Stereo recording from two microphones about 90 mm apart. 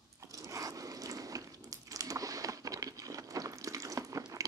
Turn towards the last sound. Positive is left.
turn(degrees=-40)  # may be behind; listen again after turning